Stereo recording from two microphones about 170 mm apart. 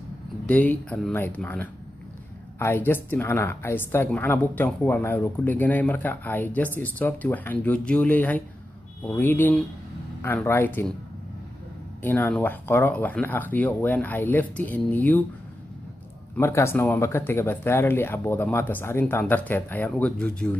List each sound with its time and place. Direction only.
0.5 s a woman's voice: 10° left (ahead or behind)
12.0 s a woman's voice: 10° left (ahead or behind)
16.3 s a woman's voice: 15° left (ahead or behind)